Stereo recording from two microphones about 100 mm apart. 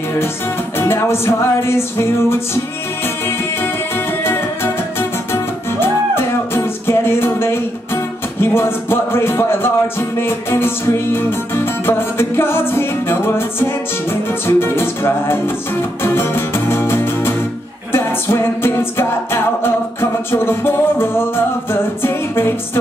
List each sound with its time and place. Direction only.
0.7 s music: 25° left (ahead or behind)
4.2 s music: 25° left (ahead or behind)